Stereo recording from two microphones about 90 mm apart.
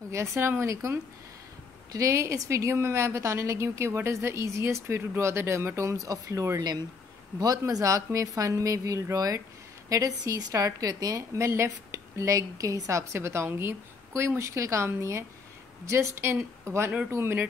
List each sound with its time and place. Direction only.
0.1 s a woman's voice: 30° right (ahead or behind)